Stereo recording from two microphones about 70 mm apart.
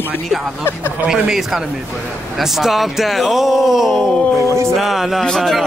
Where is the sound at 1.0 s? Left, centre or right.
Centre.